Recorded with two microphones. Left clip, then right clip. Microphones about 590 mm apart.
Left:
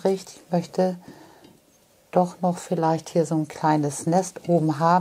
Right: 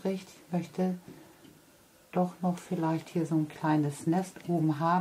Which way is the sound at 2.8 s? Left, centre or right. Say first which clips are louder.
Left 10 dB; left.